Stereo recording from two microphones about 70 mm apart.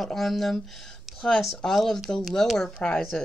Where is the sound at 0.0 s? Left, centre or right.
Centre.